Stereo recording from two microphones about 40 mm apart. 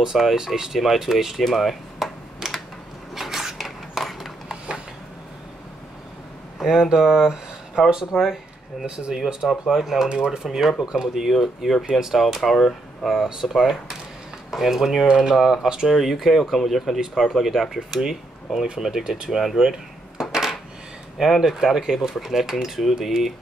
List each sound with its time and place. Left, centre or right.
0.0 s speech: centre
3.2 s a sound: centre
6.6 s speech: centre
8.8 s speech: right; by 13.2 s centre
13.4 s speech: centre
15.9 s speech: centre
19.3 s speech: centre
20.2 s coin: centre
21.2 s speech: centre